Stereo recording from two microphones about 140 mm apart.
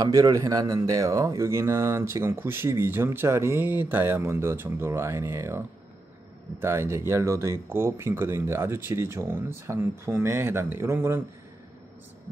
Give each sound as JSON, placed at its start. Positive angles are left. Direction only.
{"t": 0.0, "sound": "speech", "side_deg": -25}
{"t": 6.6, "sound": "speech", "side_deg": -20}